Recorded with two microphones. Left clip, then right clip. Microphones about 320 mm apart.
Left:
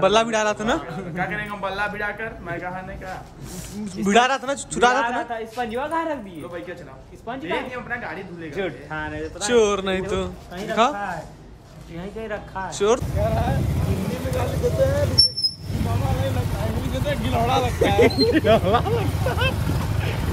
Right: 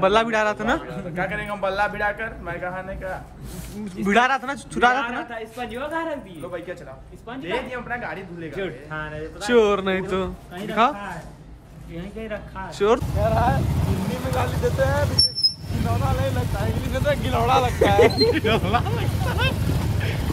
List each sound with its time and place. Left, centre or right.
0.0 s speech: centre
3.8 s speech: centre
4.9 s a woman's voice: centre
7.4 s speech: centre
8.5 s speech: left
9.4 s speech: centre
12.2 s a woman's voice: centre
12.6 s speech: centre